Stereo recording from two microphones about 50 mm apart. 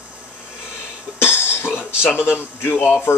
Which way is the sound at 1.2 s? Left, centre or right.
Left.